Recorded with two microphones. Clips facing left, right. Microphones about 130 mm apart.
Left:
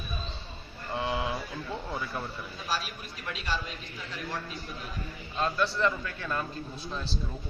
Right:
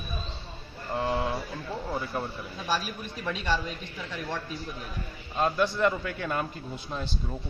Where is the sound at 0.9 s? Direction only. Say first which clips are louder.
Right 3 dB; 5° left (ahead or behind).